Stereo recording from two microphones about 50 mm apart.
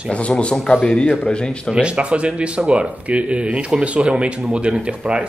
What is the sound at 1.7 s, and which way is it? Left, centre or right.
Speech, right.